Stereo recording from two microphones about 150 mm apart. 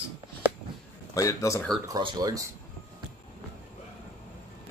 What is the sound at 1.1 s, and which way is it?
Speech, 20° left (ahead or behind).